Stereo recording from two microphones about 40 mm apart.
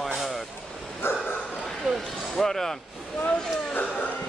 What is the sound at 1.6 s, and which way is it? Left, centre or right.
Bow-wow, centre.